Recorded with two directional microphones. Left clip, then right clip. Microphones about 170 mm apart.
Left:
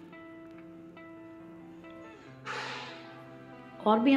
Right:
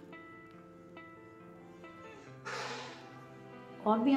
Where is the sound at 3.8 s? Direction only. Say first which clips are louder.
Left 5 dB; 15° left (ahead or behind).